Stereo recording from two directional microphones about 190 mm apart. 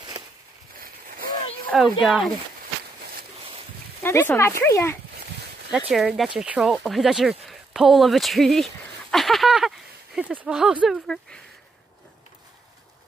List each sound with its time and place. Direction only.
0.7 s a sound: 50° right (ahead or behind)
1.7 s speech: centre (ahead or behind)
3.0 s walk: 50° right (ahead or behind)
4.0 s speech: 15° left (ahead or behind)
5.7 s speech: 5° right (ahead or behind)